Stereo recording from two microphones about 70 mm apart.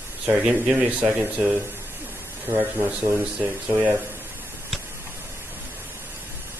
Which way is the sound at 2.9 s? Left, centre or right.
Centre.